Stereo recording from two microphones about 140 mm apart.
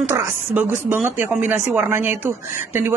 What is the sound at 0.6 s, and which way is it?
Speech, 15° right (ahead or behind).